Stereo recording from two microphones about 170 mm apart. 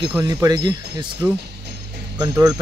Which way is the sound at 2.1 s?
20° right (ahead or behind).